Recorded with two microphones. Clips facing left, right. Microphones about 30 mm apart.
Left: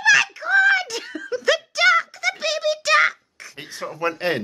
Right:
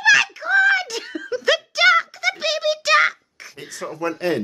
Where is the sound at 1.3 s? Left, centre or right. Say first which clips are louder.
Right 1 dB; centre.